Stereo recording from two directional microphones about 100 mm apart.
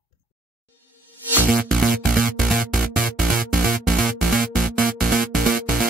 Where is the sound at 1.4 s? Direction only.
Centre (ahead or behind).